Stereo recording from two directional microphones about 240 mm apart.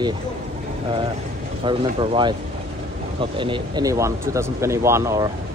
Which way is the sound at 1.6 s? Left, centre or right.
Right.